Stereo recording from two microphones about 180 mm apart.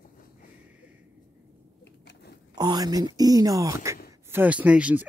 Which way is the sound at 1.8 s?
75° left (ahead or behind).